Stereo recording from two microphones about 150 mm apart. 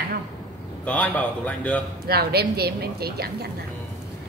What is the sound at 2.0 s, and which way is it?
A woman's voice, 90° right.